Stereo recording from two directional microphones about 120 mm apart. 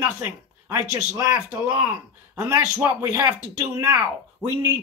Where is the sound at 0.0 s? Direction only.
25° right (ahead or behind).